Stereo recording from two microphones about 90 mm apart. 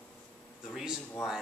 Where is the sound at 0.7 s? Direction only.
5° right (ahead or behind).